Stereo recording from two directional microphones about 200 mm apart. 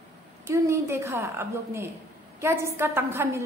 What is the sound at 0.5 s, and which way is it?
A woman's voice, 15° right (ahead or behind).